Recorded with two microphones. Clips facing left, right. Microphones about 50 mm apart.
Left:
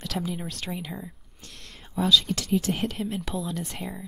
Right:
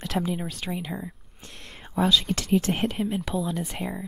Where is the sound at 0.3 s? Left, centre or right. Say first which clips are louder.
Right 3 dB; centre.